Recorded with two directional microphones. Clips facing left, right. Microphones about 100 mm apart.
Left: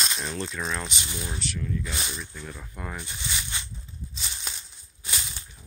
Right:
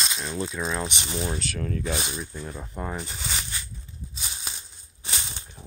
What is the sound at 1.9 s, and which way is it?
Speech, 30° right (ahead or behind).